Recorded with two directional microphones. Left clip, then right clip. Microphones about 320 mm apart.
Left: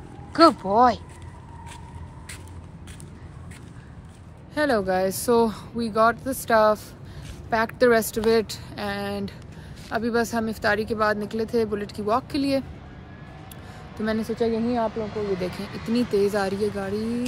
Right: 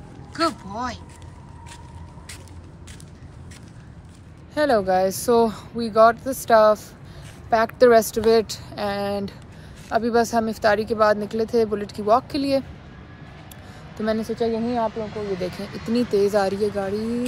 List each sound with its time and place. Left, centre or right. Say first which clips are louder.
0.3 s speech: left 8 dB; centre
4.6 s speech: right 3 dB; centre
13.9 s speech: right 2 dB; centre
15.9 s speech: right 3 dB; centre